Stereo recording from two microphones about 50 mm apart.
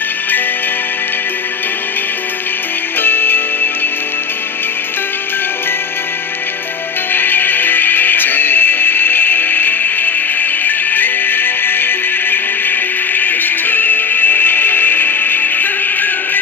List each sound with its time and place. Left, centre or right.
3.0 s music: left
7.1 s music: left